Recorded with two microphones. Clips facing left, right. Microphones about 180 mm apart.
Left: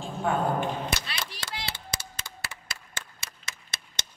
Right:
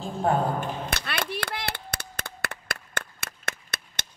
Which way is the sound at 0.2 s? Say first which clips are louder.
Right 2 dB; 40° right (ahead or behind).